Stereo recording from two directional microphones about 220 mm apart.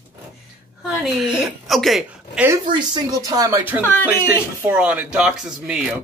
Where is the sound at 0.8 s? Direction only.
Centre (ahead or behind).